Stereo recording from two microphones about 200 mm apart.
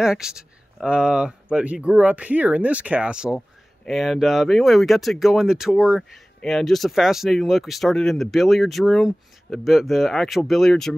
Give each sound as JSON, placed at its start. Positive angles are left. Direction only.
{"t": 0.0, "sound": "speech", "side_deg": -5}